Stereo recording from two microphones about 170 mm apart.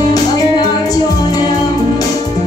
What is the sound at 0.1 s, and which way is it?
Music, 20° left (ahead or behind).